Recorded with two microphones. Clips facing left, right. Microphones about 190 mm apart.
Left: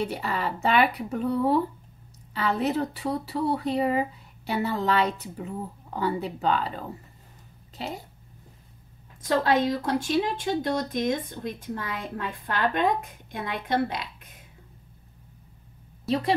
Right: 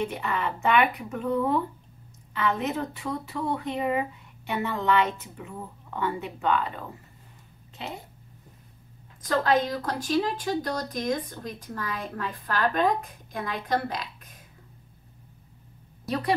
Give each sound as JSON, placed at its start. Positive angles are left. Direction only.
{"t": 0.0, "sound": "speech", "side_deg": 35}
{"t": 9.2, "sound": "speech", "side_deg": 25}